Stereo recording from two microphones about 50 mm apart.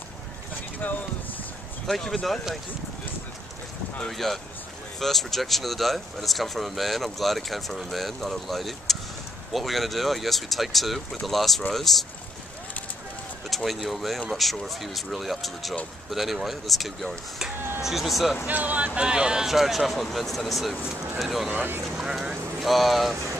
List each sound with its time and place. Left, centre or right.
0.8 s speech: left
1.9 s speech: centre
4.2 s speech: centre
13.5 s speech: centre
18.5 s speech: right
18.9 s speech: centre
22.6 s speech: centre